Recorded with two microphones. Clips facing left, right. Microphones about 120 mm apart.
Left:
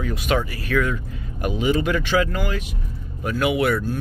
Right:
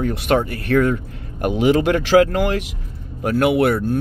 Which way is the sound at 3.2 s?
55° right (ahead or behind).